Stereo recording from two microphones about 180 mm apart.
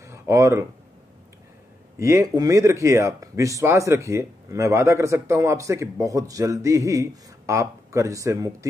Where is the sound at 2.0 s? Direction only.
15° right (ahead or behind).